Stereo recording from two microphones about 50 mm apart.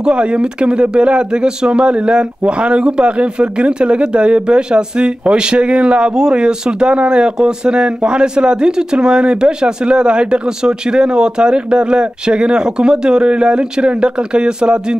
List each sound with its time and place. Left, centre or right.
0.0 s speech: centre